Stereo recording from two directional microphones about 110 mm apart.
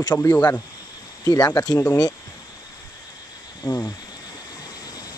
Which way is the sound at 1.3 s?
35° left (ahead or behind).